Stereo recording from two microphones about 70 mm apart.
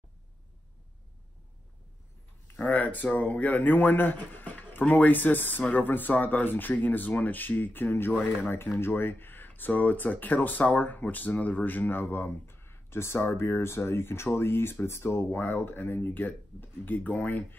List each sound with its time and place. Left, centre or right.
2.7 s speech: left